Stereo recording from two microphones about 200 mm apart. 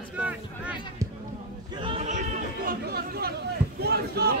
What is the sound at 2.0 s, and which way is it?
A man's voice, 40° right (ahead or behind).